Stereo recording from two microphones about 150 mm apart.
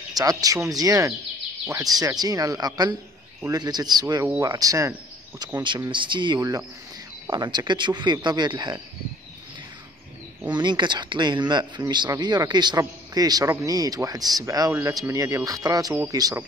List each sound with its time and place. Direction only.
0.1 s a man's voice: 25° right (ahead or behind)
10.5 s a man's voice: 30° right (ahead or behind)